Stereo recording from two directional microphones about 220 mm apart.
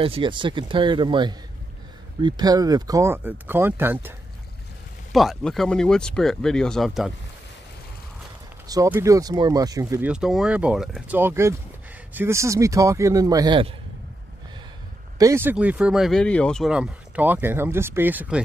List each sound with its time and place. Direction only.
0.0 s speech: 20° right (ahead or behind)
5.1 s speech: centre (ahead or behind)
8.6 s speech: 15° right (ahead or behind)
15.1 s speech: 10° right (ahead or behind)